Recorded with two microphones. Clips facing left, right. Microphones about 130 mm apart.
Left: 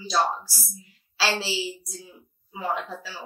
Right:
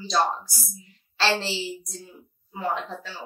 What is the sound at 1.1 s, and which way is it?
A woman's voice, 5° left (ahead or behind).